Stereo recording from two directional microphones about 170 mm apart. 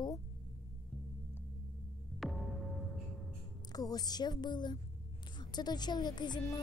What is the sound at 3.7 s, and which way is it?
A woman's voice, 20° left (ahead or behind).